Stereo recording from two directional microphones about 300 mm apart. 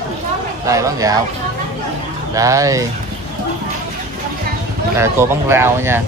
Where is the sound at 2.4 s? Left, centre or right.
Centre.